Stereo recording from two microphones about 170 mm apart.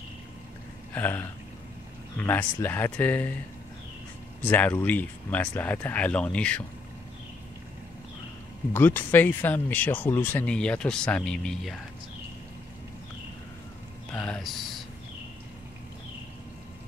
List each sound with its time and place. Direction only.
0.9 s speech: 10° left (ahead or behind)
4.4 s speech: 10° left (ahead or behind)
8.7 s speech: 10° left (ahead or behind)
14.1 s a sound: 5° left (ahead or behind)